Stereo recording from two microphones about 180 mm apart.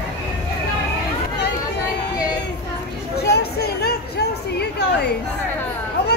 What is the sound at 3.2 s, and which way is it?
Chatter, 65° left (ahead or behind).